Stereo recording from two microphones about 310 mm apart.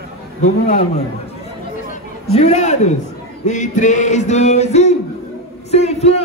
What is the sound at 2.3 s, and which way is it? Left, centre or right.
A man's voice, left.